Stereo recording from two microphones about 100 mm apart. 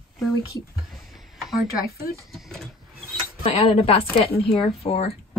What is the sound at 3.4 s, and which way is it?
Speech, 80° left.